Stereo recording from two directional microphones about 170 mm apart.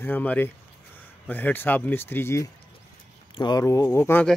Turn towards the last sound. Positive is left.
turn(degrees=10)  # may be behind; listen again after turning